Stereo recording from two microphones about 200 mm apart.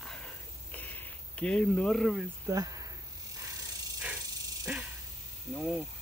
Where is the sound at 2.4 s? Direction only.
15° right (ahead or behind).